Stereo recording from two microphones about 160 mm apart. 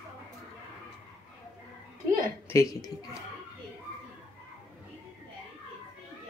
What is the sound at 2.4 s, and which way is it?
Speech, 20° left (ahead or behind).